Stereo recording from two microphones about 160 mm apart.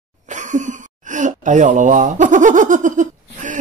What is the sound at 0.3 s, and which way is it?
Speech, 50° right (ahead or behind).